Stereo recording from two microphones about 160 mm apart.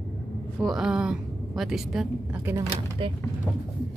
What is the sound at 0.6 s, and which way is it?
A woman's voice, centre (ahead or behind).